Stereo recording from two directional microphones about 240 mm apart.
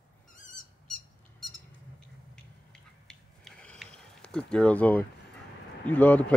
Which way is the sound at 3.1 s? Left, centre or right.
Centre.